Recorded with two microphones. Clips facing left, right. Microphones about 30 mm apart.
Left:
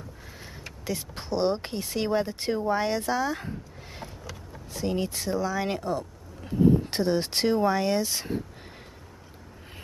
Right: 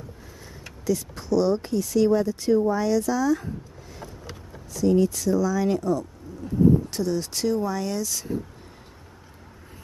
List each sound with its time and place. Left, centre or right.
0.8 s speech: left
4.7 s speech: left